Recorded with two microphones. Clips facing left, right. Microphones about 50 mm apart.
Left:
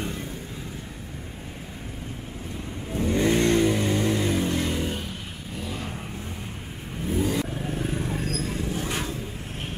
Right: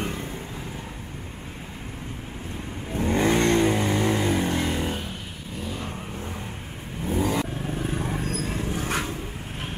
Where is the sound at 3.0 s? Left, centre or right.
Right.